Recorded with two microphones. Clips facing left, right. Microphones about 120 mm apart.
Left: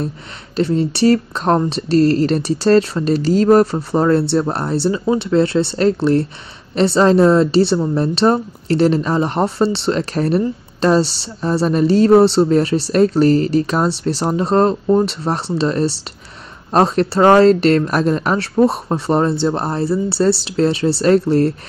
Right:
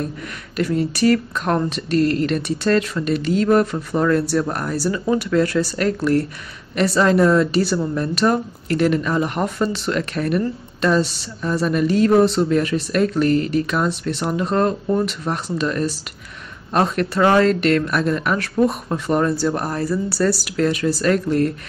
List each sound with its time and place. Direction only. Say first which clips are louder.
0.6 s speech: left 4 dB; 30° left (ahead or behind)